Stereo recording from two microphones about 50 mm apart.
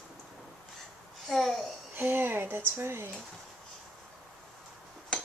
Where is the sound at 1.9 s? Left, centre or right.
Right.